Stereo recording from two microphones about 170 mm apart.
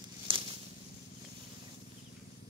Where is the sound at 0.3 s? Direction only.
30° right (ahead or behind).